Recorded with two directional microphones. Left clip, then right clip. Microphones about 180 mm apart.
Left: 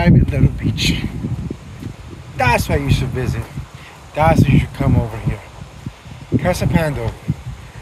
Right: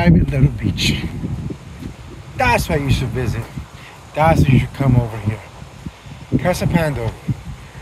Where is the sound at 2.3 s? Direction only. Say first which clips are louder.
Even; 15° left (ahead or behind).